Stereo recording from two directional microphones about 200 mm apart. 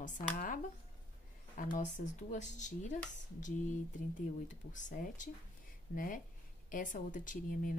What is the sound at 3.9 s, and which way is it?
A woman's voice, 40° left (ahead or behind).